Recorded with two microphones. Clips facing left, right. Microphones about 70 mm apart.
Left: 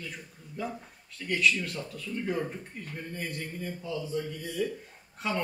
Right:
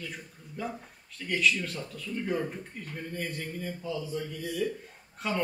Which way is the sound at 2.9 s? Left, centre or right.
Centre.